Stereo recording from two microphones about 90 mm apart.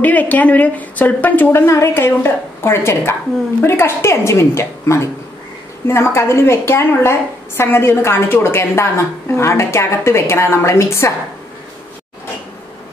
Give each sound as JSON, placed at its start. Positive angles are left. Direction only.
{"t": 0.0, "sound": "a woman's voice", "side_deg": 15}